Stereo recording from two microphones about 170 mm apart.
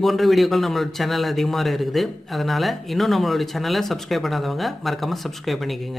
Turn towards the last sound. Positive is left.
turn(degrees=0)  # may be behind; listen again after turning